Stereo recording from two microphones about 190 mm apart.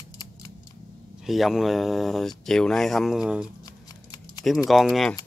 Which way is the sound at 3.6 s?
20° left (ahead or behind).